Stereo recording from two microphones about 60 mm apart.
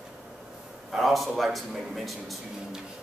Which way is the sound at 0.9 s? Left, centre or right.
Centre.